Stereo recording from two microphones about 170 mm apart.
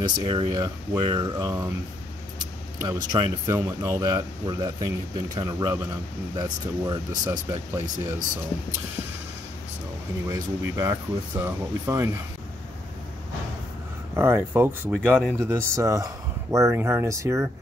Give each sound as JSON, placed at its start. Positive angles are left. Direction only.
{"t": 0.0, "sound": "speech", "side_deg": -30}
{"t": 2.8, "sound": "speech", "side_deg": -25}
{"t": 10.2, "sound": "speech", "side_deg": -20}
{"t": 14.1, "sound": "speech", "side_deg": -15}
{"t": 15.4, "sound": "speech", "side_deg": -15}